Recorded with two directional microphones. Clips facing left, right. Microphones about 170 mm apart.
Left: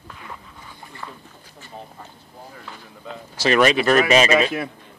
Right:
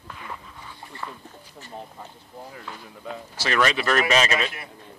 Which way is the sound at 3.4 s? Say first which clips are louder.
Left 6 dB; 20° left (ahead or behind).